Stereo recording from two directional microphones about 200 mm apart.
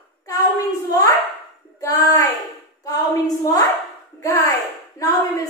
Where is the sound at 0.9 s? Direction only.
20° left (ahead or behind).